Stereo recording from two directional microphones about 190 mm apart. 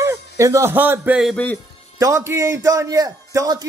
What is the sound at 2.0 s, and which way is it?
A man's voice, 15° right (ahead or behind).